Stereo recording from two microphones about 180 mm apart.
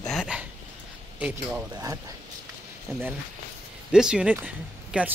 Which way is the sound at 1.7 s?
20° right (ahead or behind).